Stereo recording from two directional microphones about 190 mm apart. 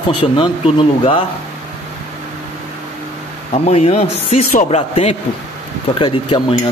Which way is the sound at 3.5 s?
35° left (ahead or behind).